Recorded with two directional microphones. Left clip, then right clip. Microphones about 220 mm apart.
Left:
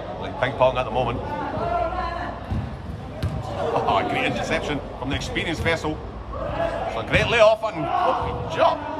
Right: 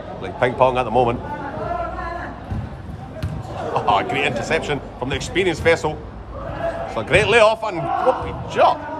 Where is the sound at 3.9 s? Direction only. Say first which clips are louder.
Right 7 dB; 25° right (ahead or behind).